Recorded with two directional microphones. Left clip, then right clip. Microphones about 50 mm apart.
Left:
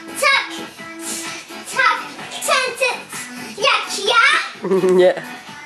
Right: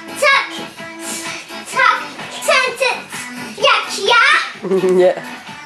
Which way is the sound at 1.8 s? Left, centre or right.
Left.